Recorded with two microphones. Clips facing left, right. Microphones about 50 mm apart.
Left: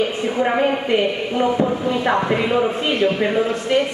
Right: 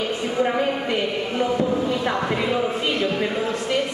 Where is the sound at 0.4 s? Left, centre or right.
Left.